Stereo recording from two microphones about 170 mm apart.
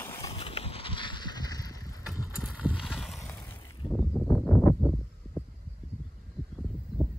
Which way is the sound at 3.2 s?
10° left (ahead or behind).